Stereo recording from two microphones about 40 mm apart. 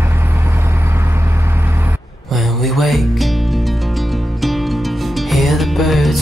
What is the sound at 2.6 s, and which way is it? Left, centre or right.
Music, centre.